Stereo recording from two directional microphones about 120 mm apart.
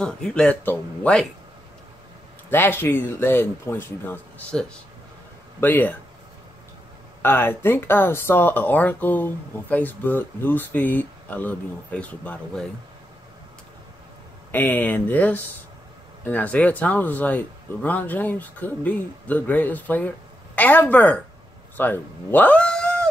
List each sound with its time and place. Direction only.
0.0 s speech: 10° left (ahead or behind)
2.5 s speech: 15° left (ahead or behind)
5.6 s speech: 15° left (ahead or behind)
7.2 s speech: 20° left (ahead or behind)
14.5 s speech: 15° left (ahead or behind)